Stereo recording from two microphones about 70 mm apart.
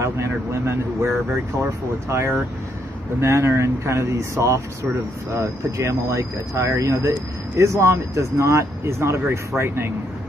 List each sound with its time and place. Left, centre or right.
0.0 s speech: right